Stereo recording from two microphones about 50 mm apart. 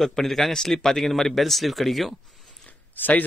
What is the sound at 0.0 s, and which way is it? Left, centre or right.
Speech, centre.